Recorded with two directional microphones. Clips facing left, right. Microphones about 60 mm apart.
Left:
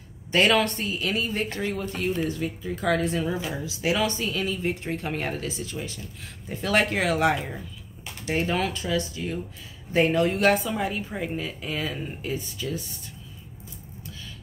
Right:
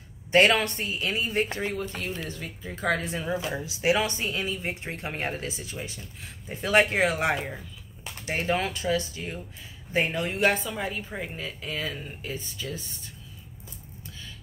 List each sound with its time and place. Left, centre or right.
0.5 s speech: centre
1.3 s speech: right
1.7 s speech: centre
2.6 s speech: centre
3.6 s speech: right
9.9 s speech: centre